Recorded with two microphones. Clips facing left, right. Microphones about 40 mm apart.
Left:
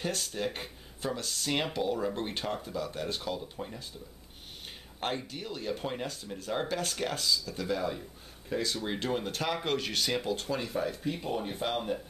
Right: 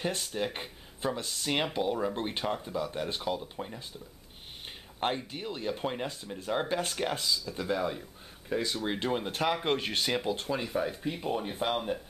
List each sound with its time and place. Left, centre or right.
0.0 s speech: centre
5.0 s speech: right; by 6.5 s centre
6.7 s speech: right